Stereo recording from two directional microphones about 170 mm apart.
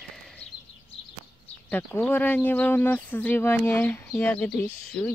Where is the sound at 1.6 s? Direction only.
10° left (ahead or behind).